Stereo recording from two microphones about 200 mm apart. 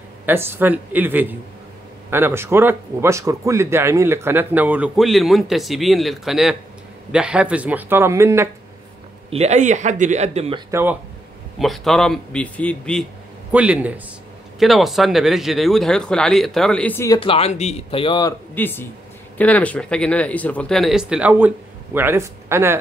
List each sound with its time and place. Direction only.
0.3 s a man's voice: 10° right (ahead or behind)
9.3 s speech: 35° right (ahead or behind)
10.7 s a man's voice: 10° right (ahead or behind)
11.5 s speech: centre (ahead or behind)
13.5 s a man's voice: 5° right (ahead or behind); by 17.2 s 15° left (ahead or behind)
17.2 s speech: 30° left (ahead or behind)
18.5 s speech: 10° left (ahead or behind); by 22.8 s 10° right (ahead or behind)